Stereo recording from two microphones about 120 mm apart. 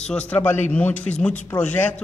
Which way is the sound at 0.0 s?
10° left (ahead or behind).